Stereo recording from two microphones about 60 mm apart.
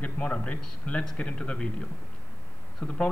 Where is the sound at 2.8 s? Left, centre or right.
Left.